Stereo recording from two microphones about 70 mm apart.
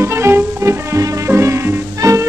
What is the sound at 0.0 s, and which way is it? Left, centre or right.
Music, right.